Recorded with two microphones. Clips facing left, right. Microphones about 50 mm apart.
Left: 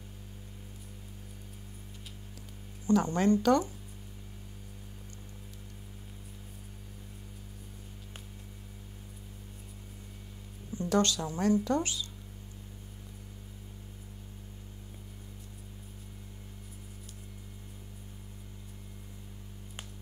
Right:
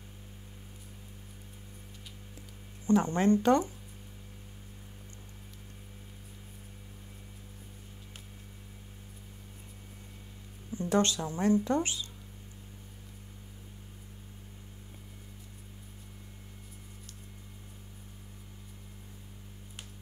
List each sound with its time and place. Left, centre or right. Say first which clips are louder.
2.9 s speech: right 1 dB; right
10.7 s speech: even; right